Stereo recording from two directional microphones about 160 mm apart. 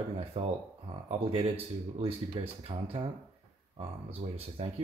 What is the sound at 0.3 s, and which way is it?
Speech, 40° right (ahead or behind).